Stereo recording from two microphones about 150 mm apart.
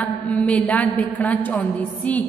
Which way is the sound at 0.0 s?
10° left (ahead or behind).